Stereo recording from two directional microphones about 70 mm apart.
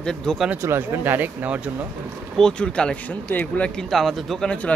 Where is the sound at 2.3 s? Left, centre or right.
Centre.